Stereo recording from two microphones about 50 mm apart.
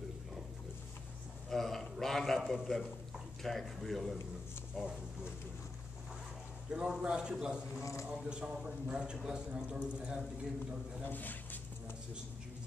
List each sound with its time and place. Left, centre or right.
1.5 s a sound: centre
3.4 s speech: centre
6.7 s a man's voice: centre
7.8 s a man's voice: left
8.1 s a man's voice: centre
11.1 s speech: left